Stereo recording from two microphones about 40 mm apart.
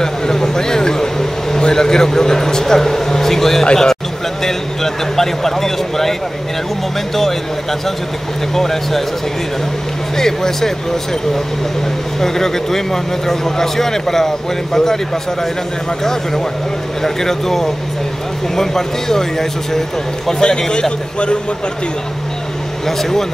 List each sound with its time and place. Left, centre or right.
0.0 s a sound: centre
1.5 s a man's voice: centre
8.5 s a man's voice: centre
10.1 s a man's voice: centre
12.2 s a man's voice: centre
17.0 s a man's voice: centre